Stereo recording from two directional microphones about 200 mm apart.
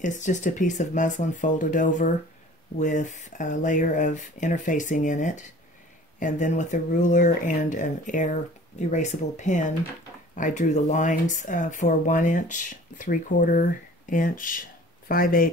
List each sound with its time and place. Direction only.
0.0 s speech: 40° left (ahead or behind)